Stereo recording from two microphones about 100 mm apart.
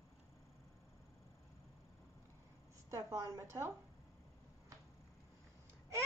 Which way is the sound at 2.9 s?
30° right (ahead or behind).